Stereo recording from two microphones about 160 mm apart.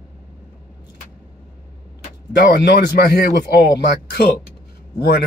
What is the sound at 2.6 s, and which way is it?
Speech, 90° left.